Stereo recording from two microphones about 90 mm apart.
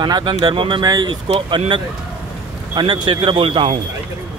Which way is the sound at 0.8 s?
45° right (ahead or behind).